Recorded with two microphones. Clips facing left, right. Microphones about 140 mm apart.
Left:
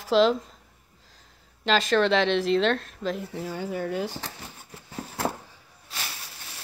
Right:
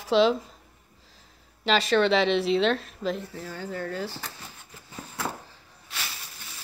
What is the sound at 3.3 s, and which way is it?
Speech, 15° left (ahead or behind).